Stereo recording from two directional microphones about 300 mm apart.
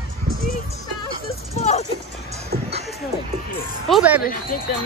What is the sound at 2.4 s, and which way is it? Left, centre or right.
Music, centre.